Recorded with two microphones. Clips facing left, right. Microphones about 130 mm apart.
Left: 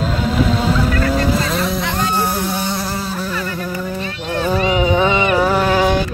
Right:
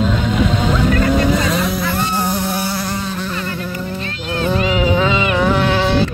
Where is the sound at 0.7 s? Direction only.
35° left (ahead or behind).